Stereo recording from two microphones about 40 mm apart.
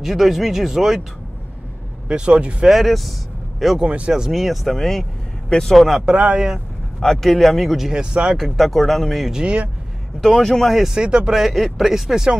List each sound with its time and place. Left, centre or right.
0.0 s speech: centre
2.0 s speech: right
2.7 s a man's voice: centre
5.9 s speech: centre
7.1 s speech: centre
7.9 s speech: right
8.5 s speech: centre
11.0 s speech: right
11.3 s speech: centre